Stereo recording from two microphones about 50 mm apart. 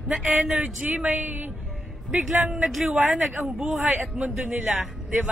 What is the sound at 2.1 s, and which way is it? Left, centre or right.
A man's voice, centre.